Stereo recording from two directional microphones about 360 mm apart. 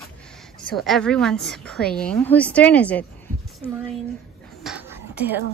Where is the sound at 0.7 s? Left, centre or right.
Centre.